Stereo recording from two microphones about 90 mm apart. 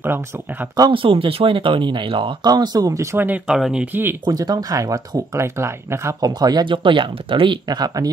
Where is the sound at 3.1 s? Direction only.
20° right (ahead or behind).